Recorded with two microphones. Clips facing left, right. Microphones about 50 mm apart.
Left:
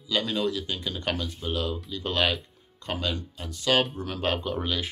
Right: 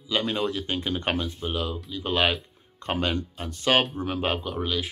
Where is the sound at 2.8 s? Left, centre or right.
Right.